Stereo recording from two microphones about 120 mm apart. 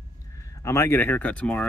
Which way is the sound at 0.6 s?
20° left (ahead or behind).